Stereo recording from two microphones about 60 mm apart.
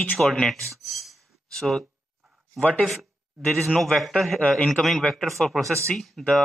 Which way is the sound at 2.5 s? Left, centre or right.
Left.